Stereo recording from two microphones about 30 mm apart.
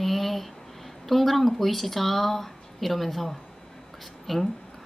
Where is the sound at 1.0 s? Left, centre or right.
Centre.